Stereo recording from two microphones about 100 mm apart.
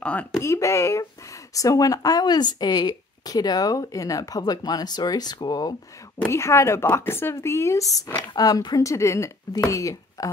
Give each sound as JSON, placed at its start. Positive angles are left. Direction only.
{"t": 0.0, "sound": "speech", "side_deg": 15}
{"t": 0.4, "sound": "speech", "side_deg": 30}
{"t": 6.2, "sound": "a woman's voice", "side_deg": 30}